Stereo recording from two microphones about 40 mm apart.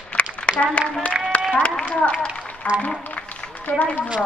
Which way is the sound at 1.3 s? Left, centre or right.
Left.